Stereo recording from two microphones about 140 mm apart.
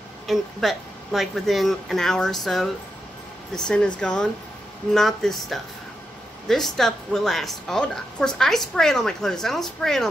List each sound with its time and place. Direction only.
0.3 s a woman's voice: centre (ahead or behind)